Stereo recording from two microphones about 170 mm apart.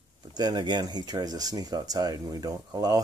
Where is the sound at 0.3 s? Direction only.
25° right (ahead or behind).